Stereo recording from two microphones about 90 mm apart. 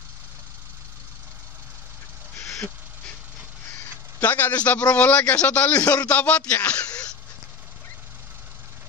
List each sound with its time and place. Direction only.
2.3 s vehicle: 30° left (ahead or behind)
4.2 s a man's voice: 20° left (ahead or behind)